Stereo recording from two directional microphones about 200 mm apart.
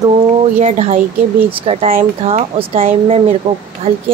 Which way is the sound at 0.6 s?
30° right (ahead or behind).